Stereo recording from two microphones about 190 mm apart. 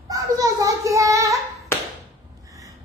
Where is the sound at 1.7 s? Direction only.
15° left (ahead or behind).